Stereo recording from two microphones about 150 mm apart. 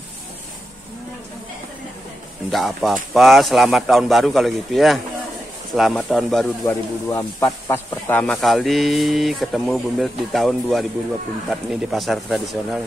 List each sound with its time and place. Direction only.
2.5 s speech: centre (ahead or behind)
6.6 s speech: 15° left (ahead or behind)
8.4 s speech: centre (ahead or behind)